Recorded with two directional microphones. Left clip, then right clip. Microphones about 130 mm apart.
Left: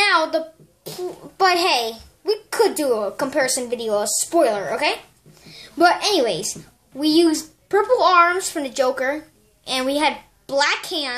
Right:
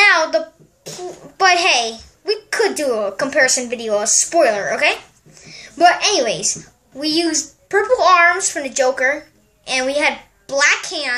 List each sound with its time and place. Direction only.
0.0 s a sound: 20° left (ahead or behind)
1.0 s a child's voice: 20° left (ahead or behind)
4.0 s a woman's voice: 15° right (ahead or behind)
4.3 s a woman's voice: 15° left (ahead or behind)
5.4 s a sound: 20° left (ahead or behind)
7.0 s a child's voice: 25° left (ahead or behind)